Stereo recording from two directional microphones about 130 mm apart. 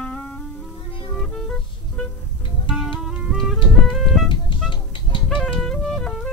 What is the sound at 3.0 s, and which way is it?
Music, 5° right (ahead or behind).